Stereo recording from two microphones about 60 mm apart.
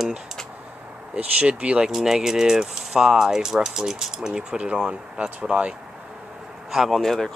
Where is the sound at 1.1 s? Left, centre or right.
Centre.